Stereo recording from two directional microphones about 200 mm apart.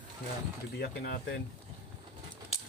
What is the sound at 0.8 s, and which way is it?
Speech, 50° left (ahead or behind).